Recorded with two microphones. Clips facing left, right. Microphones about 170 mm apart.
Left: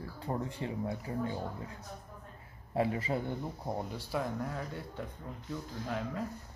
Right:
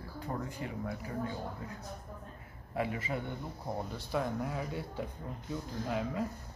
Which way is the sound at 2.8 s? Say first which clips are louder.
Left 3 dB; 35° left (ahead or behind).